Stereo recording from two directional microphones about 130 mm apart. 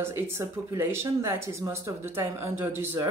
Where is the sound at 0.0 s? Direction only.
20° right (ahead or behind).